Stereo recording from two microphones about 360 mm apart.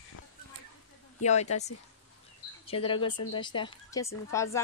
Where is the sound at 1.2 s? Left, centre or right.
Centre.